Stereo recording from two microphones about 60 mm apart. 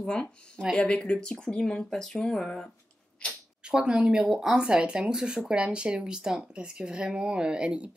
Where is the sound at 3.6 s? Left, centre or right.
Centre.